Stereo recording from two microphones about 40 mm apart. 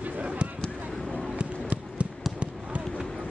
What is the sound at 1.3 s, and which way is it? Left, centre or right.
Basketball bounce, right.